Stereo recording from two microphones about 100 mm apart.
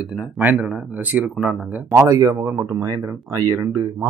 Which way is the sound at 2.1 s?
30° right (ahead or behind).